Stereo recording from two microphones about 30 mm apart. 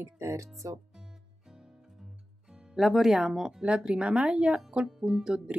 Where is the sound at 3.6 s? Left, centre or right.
Right.